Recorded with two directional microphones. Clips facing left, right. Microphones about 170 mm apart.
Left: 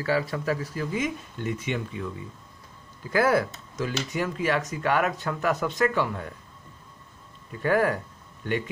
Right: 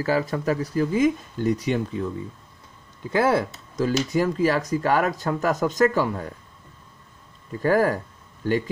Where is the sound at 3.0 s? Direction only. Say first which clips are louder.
Right 2 dB; 25° right (ahead or behind).